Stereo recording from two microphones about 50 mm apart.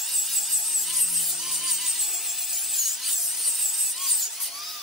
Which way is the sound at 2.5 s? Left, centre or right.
Centre.